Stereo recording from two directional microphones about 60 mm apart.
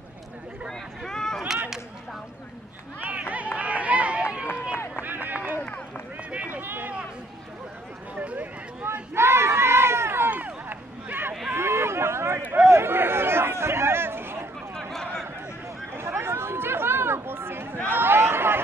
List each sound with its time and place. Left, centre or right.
0.7 s speech: centre
3.0 s speech: right
3.5 s run: right
4.7 s run: left
5.0 s run: right
8.2 s speech: right
9.1 s crowd: right
10.3 s run: right
11.5 s a sound: right
14.8 s a sound: centre
15.9 s a sound: right